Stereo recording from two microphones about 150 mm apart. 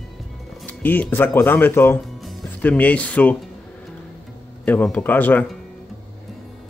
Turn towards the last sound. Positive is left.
turn(degrees=10)  # may be behind; listen again after turning